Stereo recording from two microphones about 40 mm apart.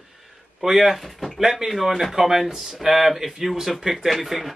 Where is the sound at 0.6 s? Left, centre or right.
Centre.